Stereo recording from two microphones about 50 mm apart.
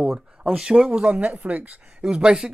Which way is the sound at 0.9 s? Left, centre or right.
Right.